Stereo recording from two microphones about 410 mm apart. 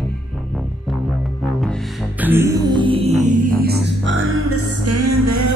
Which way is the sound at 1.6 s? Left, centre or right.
Centre.